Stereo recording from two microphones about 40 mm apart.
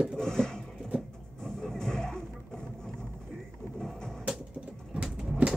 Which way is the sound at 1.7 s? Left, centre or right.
Centre.